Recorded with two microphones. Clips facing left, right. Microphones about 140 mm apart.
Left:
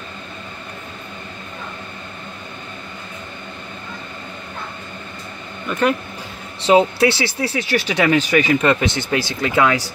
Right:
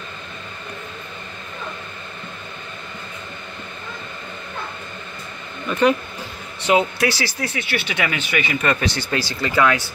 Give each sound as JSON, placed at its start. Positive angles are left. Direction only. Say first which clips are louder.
{"t": 5.7, "sound": "speech", "louder": "right 1 dB", "side_deg": 5}
{"t": 6.6, "sound": "speech", "louder": "left 4 dB", "side_deg": 30}
{"t": 8.5, "sound": "speech", "louder": "left 4 dB", "side_deg": 20}